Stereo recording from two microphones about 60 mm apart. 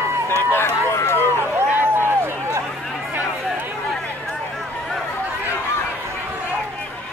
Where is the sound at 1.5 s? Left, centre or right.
Right.